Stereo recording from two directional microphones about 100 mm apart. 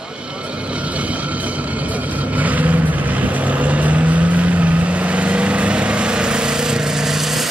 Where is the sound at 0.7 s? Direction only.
15° right (ahead or behind).